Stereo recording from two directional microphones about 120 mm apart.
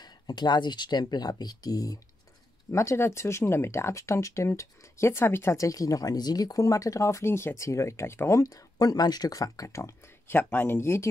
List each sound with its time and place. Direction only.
0.0 s speech: 35° left (ahead or behind)